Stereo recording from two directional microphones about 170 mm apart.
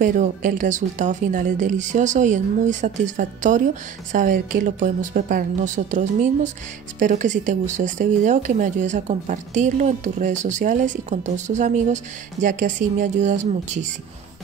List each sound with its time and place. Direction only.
0.0 s speech: 50° right (ahead or behind)